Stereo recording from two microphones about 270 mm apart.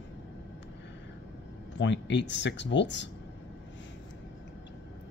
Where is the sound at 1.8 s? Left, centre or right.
Left.